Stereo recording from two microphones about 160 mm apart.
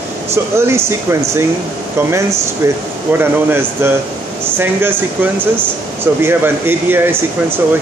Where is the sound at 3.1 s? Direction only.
15° right (ahead or behind).